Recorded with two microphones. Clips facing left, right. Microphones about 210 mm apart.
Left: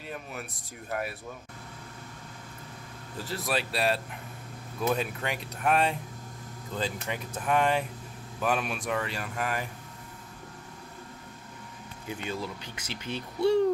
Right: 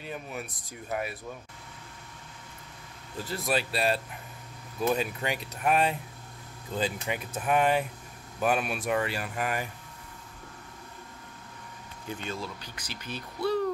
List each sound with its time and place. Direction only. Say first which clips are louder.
0.0 s speech: right 2 dB; centre (ahead or behind)
3.3 s speech: right 1 dB; centre (ahead or behind)
12.1 s speech: left 1 dB; 10° left (ahead or behind)
12.6 s speech: left 3 dB; 25° left (ahead or behind)